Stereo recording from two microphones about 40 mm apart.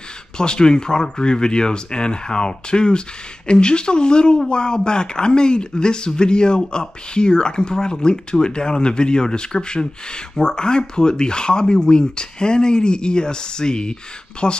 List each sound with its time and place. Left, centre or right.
0.4 s speech: centre